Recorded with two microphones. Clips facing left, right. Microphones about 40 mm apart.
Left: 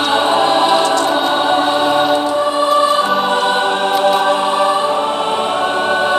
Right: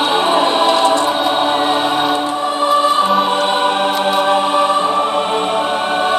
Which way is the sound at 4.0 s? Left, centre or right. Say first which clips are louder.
Left 2 dB; centre.